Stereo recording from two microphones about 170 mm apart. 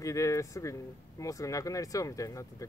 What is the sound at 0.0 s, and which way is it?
Speech, 20° left (ahead or behind).